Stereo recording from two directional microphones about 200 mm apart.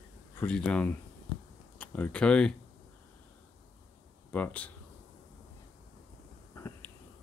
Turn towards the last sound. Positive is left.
turn(degrees=15)  # may be behind; listen again after turning